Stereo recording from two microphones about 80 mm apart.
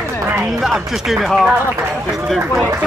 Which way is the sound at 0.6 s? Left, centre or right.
Centre.